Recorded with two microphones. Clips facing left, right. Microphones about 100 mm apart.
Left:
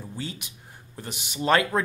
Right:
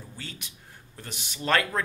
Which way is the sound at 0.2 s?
15° left (ahead or behind).